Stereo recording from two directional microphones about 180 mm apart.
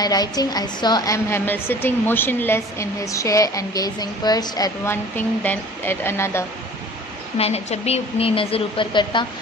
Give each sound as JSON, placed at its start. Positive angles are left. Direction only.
{"t": 0.0, "sound": "a woman's voice", "side_deg": 20}
{"t": 7.3, "sound": "speech", "side_deg": 35}